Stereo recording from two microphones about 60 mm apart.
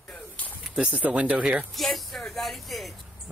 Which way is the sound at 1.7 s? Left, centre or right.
Centre.